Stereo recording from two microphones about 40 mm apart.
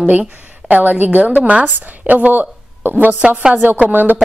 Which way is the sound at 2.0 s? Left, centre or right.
Right.